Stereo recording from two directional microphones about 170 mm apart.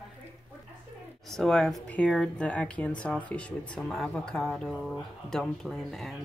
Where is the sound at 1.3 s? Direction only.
Centre (ahead or behind).